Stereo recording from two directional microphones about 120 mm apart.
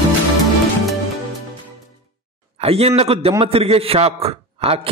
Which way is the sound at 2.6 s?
55° right (ahead or behind).